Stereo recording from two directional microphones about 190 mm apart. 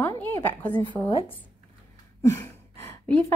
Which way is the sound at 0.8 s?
25° left (ahead or behind).